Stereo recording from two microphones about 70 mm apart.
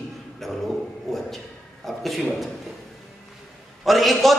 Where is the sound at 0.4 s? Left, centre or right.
Centre.